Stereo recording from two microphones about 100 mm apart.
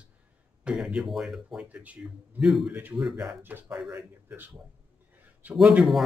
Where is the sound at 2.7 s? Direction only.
15° right (ahead or behind).